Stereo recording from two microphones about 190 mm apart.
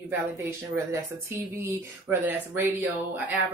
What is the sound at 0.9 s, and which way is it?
Speech, 15° right (ahead or behind).